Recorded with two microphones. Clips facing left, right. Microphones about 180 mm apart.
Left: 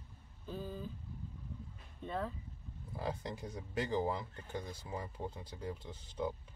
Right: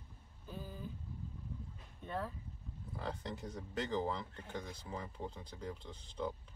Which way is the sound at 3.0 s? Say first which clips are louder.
Left 3 dB; 10° left (ahead or behind).